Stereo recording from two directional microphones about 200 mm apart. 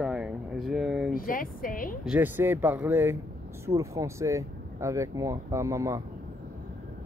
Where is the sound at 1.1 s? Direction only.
45° left (ahead or behind).